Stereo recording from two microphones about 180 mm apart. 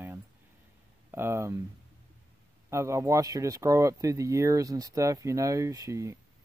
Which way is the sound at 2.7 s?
15° right (ahead or behind).